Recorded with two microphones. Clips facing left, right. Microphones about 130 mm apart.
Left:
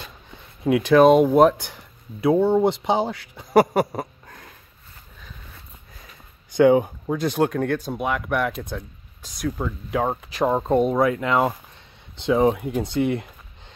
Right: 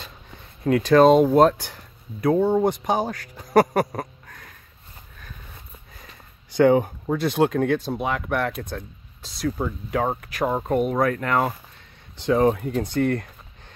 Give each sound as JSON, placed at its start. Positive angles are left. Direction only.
{"t": 0.7, "sound": "speech", "side_deg": 10}
{"t": 1.6, "sound": "speech", "side_deg": 15}
{"t": 4.3, "sound": "sniff", "side_deg": 25}
{"t": 6.5, "sound": "speech", "side_deg": 10}
{"t": 10.6, "sound": "speech", "side_deg": 25}
{"t": 11.0, "sound": "speech", "side_deg": 15}